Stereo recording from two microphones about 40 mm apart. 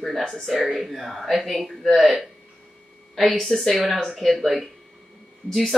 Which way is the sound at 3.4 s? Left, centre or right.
Centre.